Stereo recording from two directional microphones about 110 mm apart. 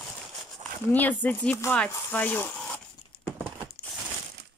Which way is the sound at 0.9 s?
15° left (ahead or behind).